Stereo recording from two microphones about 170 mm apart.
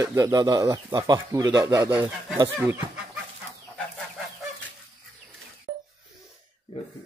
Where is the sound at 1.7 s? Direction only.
10° right (ahead or behind).